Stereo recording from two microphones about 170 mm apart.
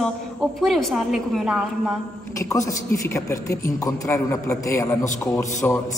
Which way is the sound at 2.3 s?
20° left (ahead or behind).